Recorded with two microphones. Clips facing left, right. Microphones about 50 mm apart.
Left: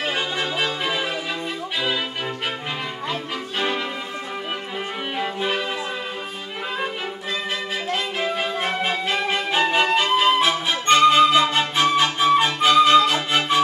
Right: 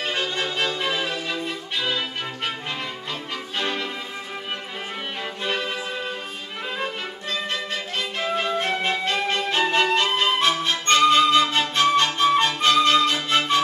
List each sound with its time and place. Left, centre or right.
0.0 s violin: centre
3.1 s music: centre
5.2 s music: centre
8.4 s music: centre
10.1 s flute: centre